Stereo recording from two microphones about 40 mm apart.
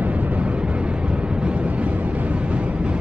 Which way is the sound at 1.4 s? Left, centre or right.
Right.